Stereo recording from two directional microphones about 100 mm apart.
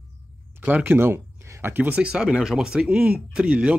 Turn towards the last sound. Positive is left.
turn(degrees=-10)  # may be behind; listen again after turning